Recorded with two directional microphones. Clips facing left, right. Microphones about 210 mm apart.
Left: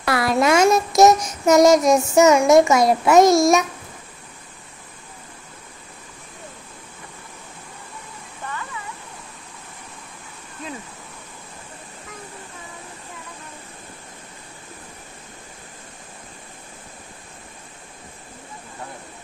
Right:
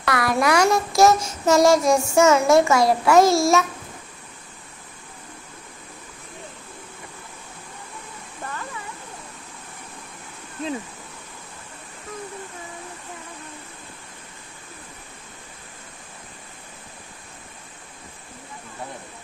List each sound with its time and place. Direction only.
0.0 s child singing: 25° left (ahead or behind)